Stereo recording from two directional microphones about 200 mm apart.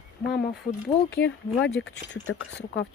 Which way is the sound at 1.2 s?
60° left (ahead or behind).